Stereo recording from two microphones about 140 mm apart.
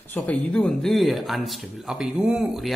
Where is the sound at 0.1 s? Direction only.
10° left (ahead or behind).